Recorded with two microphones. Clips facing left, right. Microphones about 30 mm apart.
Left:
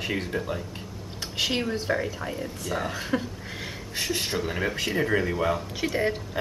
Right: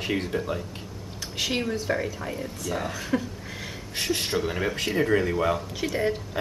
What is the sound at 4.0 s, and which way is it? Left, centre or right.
Speech, centre.